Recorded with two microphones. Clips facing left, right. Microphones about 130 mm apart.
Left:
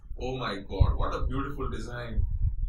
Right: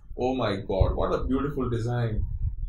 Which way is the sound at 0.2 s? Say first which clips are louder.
Right 8 dB; 55° right (ahead or behind).